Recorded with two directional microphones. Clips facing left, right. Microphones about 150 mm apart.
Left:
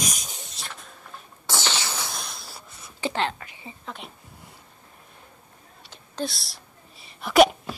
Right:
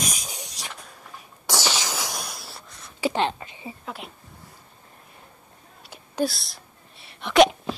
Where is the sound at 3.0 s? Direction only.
15° right (ahead or behind).